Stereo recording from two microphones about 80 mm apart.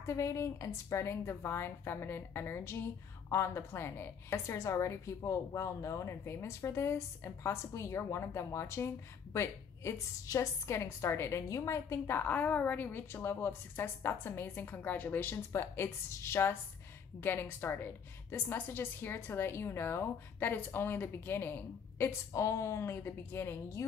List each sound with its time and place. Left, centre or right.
0.0 s a woman's voice: left
12.2 s a woman's voice: left
22.3 s a woman's voice: left
22.9 s a woman's voice: left